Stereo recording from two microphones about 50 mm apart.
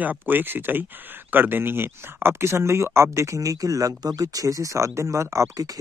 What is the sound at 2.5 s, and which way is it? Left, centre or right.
Speech, right.